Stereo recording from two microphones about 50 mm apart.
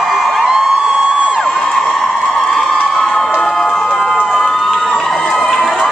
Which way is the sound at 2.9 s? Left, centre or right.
Centre.